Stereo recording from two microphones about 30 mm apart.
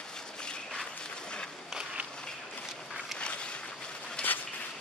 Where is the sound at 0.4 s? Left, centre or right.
Left.